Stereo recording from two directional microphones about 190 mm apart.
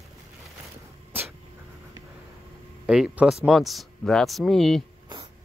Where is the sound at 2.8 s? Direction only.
5° right (ahead or behind).